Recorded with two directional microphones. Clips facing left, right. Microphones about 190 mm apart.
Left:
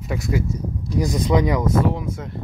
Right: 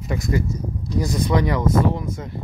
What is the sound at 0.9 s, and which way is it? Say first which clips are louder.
Speech: left 1 dB; 20° left (ahead or behind).